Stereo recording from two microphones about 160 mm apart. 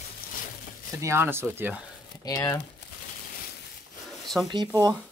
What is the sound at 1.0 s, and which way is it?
Speech, 15° right (ahead or behind).